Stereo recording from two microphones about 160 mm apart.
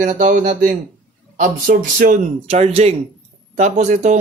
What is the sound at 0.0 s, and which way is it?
A man's voice, 50° right (ahead or behind).